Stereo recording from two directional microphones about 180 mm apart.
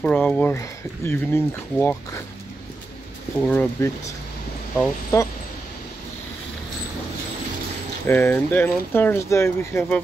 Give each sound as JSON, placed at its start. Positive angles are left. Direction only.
{"t": 0.0, "sound": "speech", "side_deg": 5}
{"t": 3.4, "sound": "speech", "side_deg": 10}
{"t": 8.1, "sound": "speech", "side_deg": 10}